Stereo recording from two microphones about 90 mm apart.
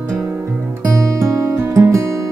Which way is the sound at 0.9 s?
35° right (ahead or behind).